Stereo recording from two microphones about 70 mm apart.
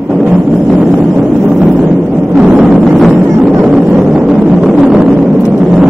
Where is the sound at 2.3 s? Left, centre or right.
Centre.